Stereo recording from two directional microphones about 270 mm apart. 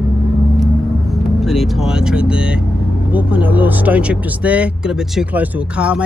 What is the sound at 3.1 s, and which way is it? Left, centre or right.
Speech, centre.